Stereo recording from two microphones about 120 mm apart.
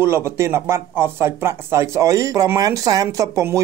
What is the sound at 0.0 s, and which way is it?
Speech, 20° right (ahead or behind).